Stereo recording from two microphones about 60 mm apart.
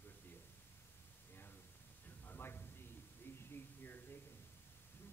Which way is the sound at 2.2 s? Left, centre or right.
Left.